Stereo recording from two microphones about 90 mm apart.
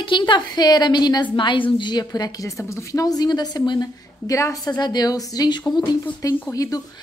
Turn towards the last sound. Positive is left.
turn(degrees=40)  # may be behind; listen again after turning